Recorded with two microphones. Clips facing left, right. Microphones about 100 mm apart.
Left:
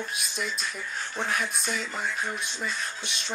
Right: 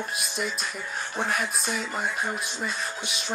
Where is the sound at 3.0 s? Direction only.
5° right (ahead or behind).